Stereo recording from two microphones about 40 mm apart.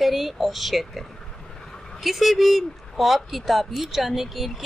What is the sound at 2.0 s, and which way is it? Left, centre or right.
Speech, centre.